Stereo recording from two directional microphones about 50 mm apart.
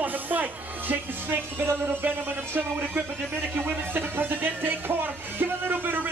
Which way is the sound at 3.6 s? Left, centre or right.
Right.